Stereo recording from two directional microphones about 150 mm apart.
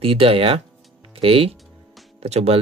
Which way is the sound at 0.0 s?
40° right (ahead or behind).